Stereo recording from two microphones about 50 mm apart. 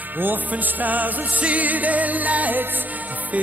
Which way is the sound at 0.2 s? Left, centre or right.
Right.